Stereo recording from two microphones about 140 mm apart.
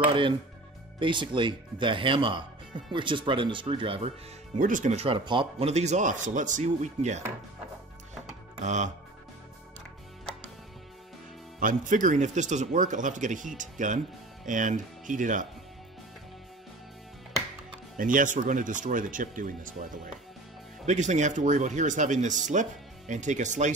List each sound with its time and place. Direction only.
0.9 s speech: 35° right (ahead or behind)
4.6 s speech: 70° right (ahead or behind)
4.9 s speech: 40° right (ahead or behind); by 7.2 s 55° right (ahead or behind)
8.5 s speech: 55° right (ahead or behind)
11.6 s speech: 65° right (ahead or behind)
17.9 s speech: 70° right (ahead or behind)
20.8 s speech: 55° right (ahead or behind)